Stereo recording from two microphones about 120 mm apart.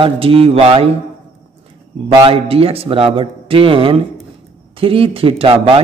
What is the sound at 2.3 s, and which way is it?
Speech, 55° right (ahead or behind).